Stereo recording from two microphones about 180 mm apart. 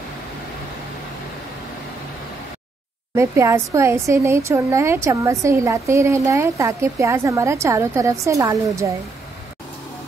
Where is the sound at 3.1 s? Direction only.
15° right (ahead or behind).